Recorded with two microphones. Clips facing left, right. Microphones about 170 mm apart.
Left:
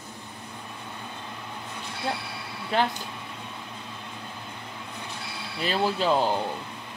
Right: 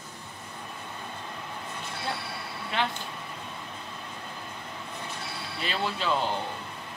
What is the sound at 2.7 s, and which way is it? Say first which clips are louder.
Speech: left 5 dB; 40° left (ahead or behind).